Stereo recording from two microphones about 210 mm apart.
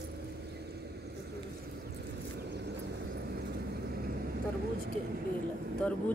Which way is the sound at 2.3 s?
50° right (ahead or behind).